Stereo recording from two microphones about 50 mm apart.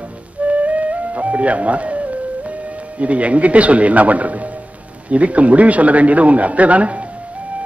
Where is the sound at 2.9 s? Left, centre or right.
Right.